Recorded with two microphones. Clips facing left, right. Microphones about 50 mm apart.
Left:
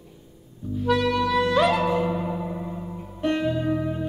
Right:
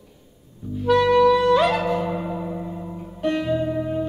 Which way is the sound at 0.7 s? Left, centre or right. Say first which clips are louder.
Right 4 dB; centre.